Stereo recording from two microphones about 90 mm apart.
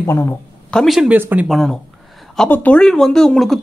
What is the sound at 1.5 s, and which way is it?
Speech, 5° left (ahead or behind).